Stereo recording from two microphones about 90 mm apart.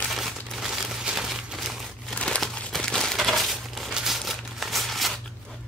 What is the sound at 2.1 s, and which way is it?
Crumpling, 10° left (ahead or behind).